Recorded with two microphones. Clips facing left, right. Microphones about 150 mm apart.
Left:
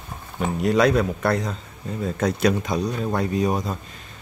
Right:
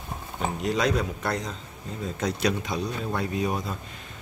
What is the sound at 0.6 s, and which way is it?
A man's voice, 60° left (ahead or behind).